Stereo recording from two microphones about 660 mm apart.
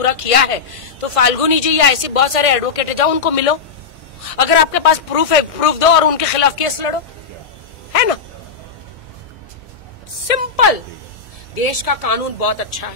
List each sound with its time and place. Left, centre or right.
0.0 s a woman's voice: left
10.2 s a woman's voice: left